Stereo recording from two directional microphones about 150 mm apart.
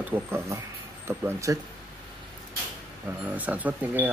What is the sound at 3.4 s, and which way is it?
Speech, 10° right (ahead or behind).